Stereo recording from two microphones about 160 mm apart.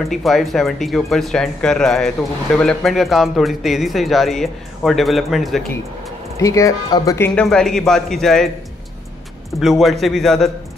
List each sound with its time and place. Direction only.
0.1 s speech: centre (ahead or behind)
6.3 s speech: 20° left (ahead or behind)
7.2 s speech: 5° left (ahead or behind)
9.6 s speech: centre (ahead or behind)